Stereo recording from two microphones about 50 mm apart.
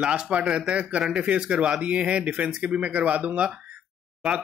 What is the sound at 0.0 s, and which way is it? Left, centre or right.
Speech, centre.